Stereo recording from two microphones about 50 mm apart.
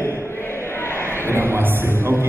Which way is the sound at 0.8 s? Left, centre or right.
Left.